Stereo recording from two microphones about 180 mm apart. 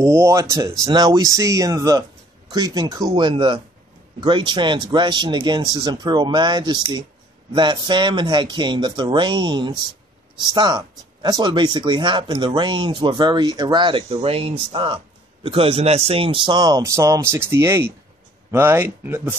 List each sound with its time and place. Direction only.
0.0 s speech: 15° right (ahead or behind)